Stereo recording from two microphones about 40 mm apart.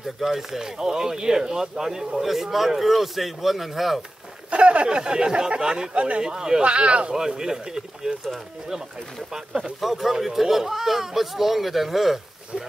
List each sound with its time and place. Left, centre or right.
0.2 s speech: centre
4.5 s a sound: right
4.8 s speech: right
5.9 s speech: right
6.2 s speech: centre
6.6 s speech: right
7.1 s speech: centre
9.3 s speech: centre